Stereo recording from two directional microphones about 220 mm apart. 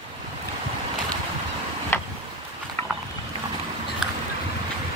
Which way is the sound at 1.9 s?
10° left (ahead or behind).